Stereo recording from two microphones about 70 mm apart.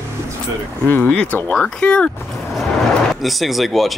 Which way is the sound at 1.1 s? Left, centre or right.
Centre.